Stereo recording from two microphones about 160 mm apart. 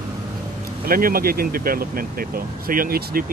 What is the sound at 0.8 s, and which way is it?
Speech, 65° right (ahead or behind).